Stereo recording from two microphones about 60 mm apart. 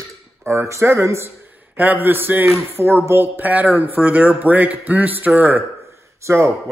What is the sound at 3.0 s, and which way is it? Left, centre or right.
Speech, right.